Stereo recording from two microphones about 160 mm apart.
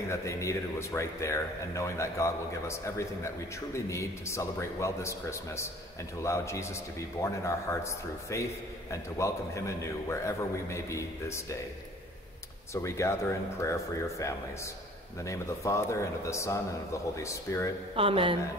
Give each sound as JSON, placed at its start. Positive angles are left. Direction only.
{"t": 0.1, "sound": "speech", "side_deg": 20}
{"t": 12.7, "sound": "speech", "side_deg": 20}
{"t": 15.2, "sound": "speech", "side_deg": 20}
{"t": 17.9, "sound": "speech", "side_deg": -35}